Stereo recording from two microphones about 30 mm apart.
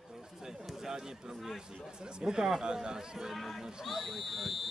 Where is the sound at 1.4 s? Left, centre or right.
Centre.